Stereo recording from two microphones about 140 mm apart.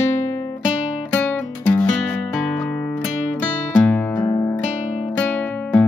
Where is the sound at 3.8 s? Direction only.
10° left (ahead or behind).